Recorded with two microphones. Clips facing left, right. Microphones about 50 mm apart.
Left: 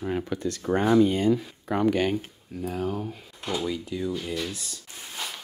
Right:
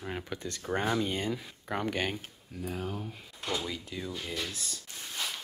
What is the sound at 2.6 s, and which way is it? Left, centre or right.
Speech, centre.